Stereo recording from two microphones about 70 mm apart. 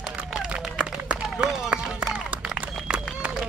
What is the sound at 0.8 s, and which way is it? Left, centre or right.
Run, centre.